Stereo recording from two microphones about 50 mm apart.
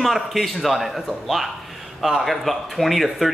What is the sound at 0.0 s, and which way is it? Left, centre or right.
Speech, centre.